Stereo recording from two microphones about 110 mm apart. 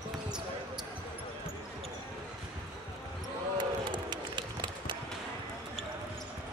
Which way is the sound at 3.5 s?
45° right (ahead or behind).